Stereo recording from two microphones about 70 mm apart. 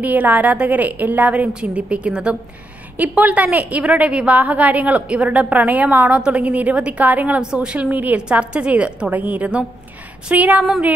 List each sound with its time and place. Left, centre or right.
0.0 s a woman's voice: right